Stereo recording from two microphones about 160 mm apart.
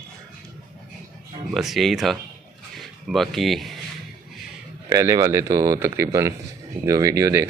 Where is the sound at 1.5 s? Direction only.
Centre (ahead or behind).